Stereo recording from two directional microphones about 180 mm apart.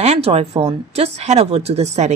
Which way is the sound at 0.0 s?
35° right (ahead or behind).